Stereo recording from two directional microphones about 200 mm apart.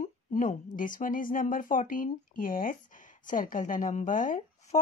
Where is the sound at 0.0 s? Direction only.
40° left (ahead or behind).